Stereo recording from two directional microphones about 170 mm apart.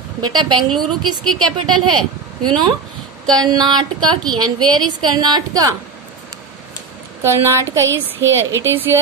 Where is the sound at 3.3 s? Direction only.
25° right (ahead or behind).